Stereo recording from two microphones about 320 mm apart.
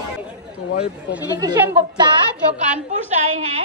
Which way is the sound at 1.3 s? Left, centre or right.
Centre.